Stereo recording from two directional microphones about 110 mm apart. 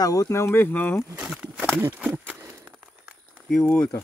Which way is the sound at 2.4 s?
25° right (ahead or behind).